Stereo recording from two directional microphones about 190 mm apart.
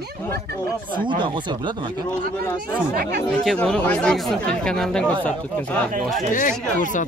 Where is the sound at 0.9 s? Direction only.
25° right (ahead or behind).